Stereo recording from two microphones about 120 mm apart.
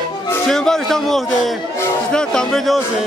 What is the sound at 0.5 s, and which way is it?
Speech, 5° left (ahead or behind).